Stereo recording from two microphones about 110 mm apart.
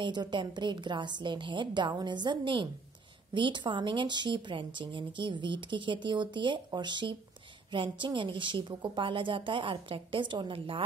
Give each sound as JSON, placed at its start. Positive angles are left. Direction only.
{"t": 0.0, "sound": "speech", "side_deg": -45}